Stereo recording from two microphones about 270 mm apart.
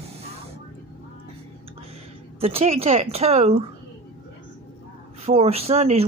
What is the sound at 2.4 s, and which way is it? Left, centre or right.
Speech, right.